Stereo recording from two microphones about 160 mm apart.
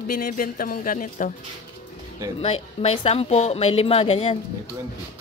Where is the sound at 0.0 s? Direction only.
60° left (ahead or behind).